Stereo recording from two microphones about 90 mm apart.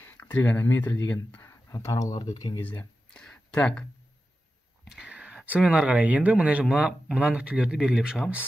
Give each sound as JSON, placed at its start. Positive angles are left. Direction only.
{"t": 0.0, "sound": "speech", "side_deg": 20}
{"t": 1.5, "sound": "speech", "side_deg": 30}
{"t": 2.6, "sound": "speech", "side_deg": 20}
{"t": 3.2, "sound": "a sound", "side_deg": 10}
{"t": 4.8, "sound": "whispering", "side_deg": -5}
{"t": 5.6, "sound": "speech", "side_deg": -10}